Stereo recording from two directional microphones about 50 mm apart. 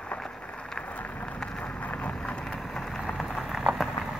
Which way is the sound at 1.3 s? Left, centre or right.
Centre.